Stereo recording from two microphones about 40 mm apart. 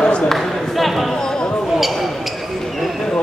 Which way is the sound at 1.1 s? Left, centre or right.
Centre.